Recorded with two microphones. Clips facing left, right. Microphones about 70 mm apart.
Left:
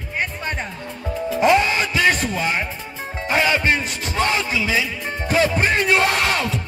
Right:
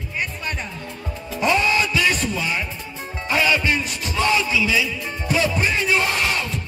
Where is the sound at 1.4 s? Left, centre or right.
Left.